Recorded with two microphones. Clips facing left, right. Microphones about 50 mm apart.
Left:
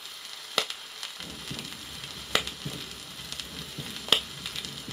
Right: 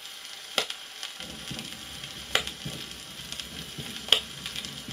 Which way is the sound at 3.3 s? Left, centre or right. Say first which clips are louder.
Even; right.